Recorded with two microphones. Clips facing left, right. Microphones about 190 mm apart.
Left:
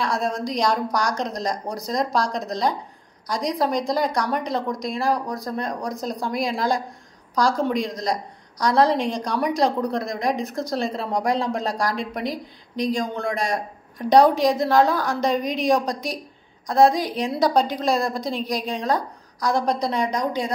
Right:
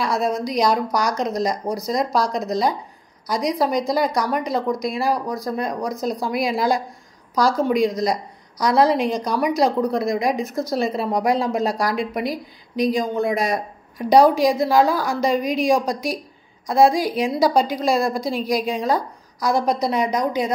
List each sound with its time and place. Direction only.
0.0 s a woman's voice: 5° right (ahead or behind)